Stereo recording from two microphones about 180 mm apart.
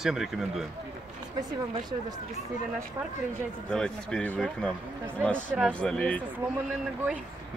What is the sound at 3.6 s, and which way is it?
Speech, 5° left (ahead or behind).